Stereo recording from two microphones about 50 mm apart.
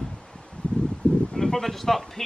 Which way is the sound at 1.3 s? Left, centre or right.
Centre.